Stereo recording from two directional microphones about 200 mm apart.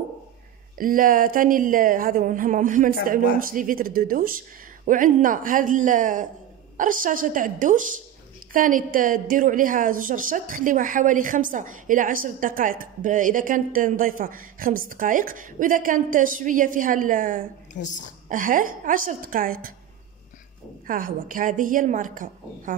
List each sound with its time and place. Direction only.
0.7 s a woman's voice: 45° right (ahead or behind)
17.8 s a woman's voice: 65° left (ahead or behind)
18.3 s a woman's voice: 45° right (ahead or behind)
20.8 s a woman's voice: 45° right (ahead or behind)